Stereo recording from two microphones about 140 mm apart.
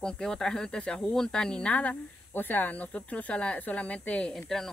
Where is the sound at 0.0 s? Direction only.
5° left (ahead or behind).